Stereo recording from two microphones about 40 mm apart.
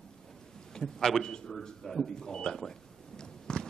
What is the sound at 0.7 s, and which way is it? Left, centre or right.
Speech, centre.